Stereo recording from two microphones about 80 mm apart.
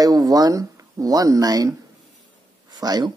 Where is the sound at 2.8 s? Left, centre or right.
Right.